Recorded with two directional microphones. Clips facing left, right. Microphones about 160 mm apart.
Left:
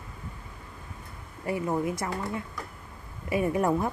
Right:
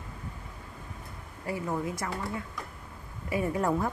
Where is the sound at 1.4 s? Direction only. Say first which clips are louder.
Left 4 dB; 25° left (ahead or behind).